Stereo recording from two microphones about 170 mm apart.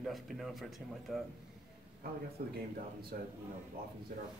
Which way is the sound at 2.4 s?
55° right (ahead or behind).